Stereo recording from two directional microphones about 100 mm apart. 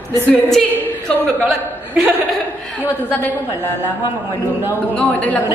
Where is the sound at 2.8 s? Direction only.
20° left (ahead or behind).